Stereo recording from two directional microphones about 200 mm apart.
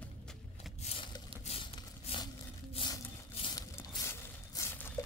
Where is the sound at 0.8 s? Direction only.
30° left (ahead or behind).